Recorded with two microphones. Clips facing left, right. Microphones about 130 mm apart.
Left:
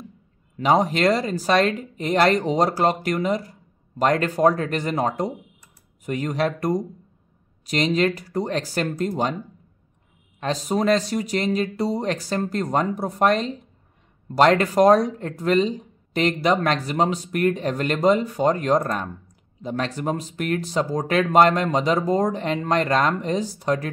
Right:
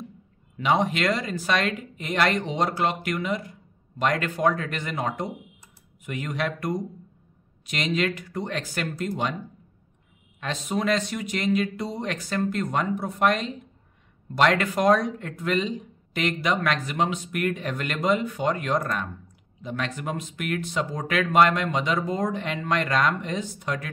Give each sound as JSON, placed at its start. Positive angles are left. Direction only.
{"t": 0.6, "sound": "speech", "side_deg": 40}
{"t": 10.4, "sound": "speech", "side_deg": 35}